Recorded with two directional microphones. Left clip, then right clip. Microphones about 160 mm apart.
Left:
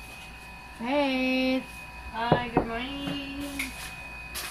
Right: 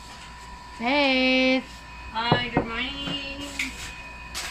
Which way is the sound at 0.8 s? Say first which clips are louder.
Right 5 dB; 50° right (ahead or behind).